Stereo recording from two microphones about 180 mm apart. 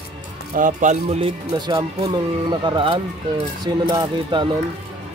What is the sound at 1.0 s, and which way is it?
Speech, 30° right (ahead or behind).